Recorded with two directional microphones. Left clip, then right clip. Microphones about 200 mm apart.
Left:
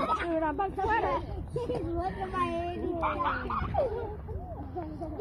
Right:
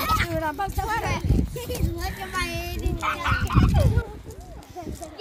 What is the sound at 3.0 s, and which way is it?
Fowl, 90° right.